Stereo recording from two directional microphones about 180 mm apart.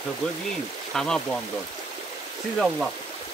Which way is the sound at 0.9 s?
5° left (ahead or behind).